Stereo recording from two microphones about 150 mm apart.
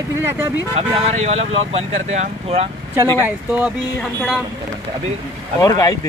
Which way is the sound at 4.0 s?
5° left (ahead or behind).